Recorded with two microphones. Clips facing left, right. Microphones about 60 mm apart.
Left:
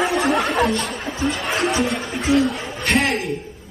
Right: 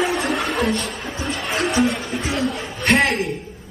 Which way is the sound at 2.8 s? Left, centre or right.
Right.